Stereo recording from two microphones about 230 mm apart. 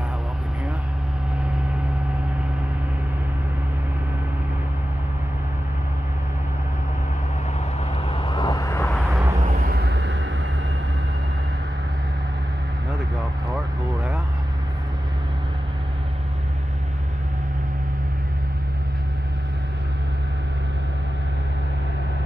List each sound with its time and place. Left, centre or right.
8.1 s vehicle: left
8.9 s vehicle: centre
9.4 s a sound: right